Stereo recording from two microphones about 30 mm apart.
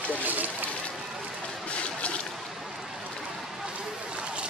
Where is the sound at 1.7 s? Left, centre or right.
Left.